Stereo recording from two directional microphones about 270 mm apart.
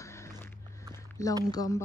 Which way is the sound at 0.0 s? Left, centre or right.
Centre.